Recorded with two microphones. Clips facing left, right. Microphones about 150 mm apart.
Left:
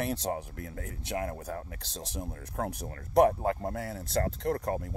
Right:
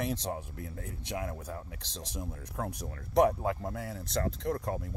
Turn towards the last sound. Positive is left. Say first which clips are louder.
# left 3 dB
turn(degrees=60)  # may be behind; listen again after turning